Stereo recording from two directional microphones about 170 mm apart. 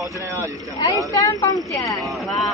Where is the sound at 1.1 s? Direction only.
20° left (ahead or behind).